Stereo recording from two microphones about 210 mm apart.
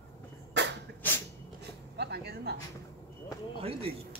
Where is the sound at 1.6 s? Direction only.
50° right (ahead or behind).